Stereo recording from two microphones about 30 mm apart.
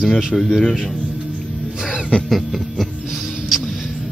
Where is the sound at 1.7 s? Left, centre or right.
Centre.